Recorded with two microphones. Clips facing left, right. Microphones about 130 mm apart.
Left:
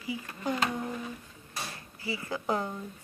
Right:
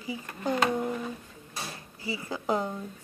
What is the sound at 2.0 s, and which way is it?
Speech, 20° right (ahead or behind).